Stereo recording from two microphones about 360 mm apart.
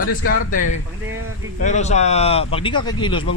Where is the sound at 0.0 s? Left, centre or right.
Left.